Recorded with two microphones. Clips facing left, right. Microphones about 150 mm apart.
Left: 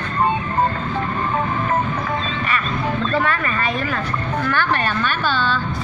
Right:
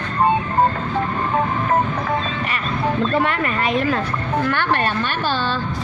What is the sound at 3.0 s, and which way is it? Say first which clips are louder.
Speech: right 1 dB; 20° right (ahead or behind).